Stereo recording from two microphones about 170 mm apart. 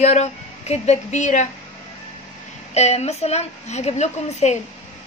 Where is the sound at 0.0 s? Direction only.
40° left (ahead or behind).